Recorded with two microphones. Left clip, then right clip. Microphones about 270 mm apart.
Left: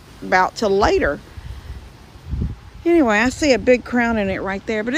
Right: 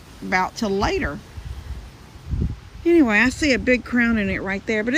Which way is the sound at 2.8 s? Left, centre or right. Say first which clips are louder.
Left 1 dB; centre.